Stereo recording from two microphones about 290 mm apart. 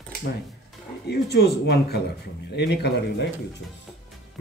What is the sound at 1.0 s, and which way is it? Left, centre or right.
Speech, left.